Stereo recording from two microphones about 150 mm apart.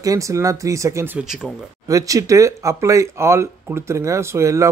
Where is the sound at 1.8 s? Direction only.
20° right (ahead or behind).